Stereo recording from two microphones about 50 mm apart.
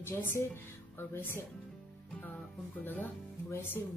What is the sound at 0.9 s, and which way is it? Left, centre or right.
Speech, left.